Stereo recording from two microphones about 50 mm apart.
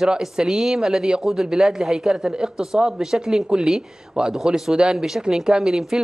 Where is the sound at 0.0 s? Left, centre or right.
Centre.